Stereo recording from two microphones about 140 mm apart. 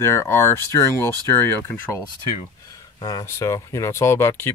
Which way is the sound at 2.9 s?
30° left (ahead or behind).